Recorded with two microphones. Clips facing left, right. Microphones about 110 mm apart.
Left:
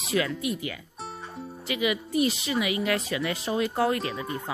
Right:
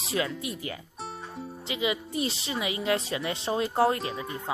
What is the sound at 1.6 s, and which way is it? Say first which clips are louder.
Speech: left 2 dB; 25° right (ahead or behind).